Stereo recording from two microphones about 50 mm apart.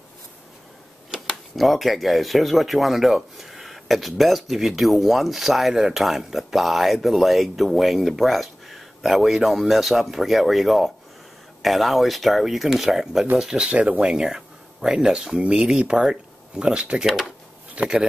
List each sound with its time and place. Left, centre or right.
1.2 s speech: centre
13.4 s speech: right
14.0 s speech: centre
17.0 s speech: centre
17.8 s speech: right